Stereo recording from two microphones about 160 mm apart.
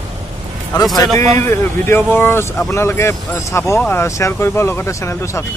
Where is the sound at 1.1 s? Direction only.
40° right (ahead or behind).